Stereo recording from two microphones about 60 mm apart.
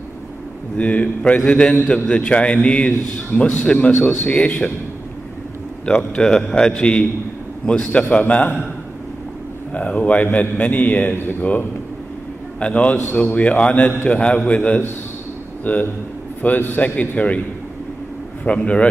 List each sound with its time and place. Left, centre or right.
0.7 s a man's voice: left
5.9 s a man's voice: centre
9.8 s a man's voice: left
12.5 s a man's voice: left
18.4 s a man's voice: left